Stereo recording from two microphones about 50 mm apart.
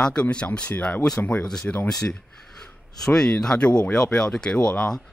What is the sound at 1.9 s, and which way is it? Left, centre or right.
A man's voice, centre.